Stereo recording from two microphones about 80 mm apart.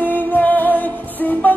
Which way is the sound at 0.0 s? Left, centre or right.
Left.